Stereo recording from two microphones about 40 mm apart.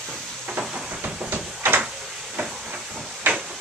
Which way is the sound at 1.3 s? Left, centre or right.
Right.